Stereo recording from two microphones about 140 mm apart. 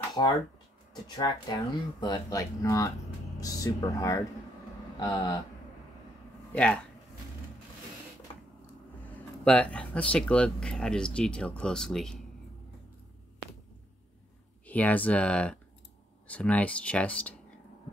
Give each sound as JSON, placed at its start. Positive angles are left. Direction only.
{"t": 0.2, "sound": "speech", "side_deg": 35}
{"t": 6.5, "sound": "speech", "side_deg": 10}
{"t": 9.0, "sound": "speech", "side_deg": 10}
{"t": 14.7, "sound": "speech", "side_deg": 10}